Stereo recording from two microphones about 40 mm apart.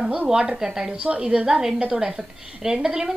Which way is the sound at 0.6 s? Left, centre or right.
Centre.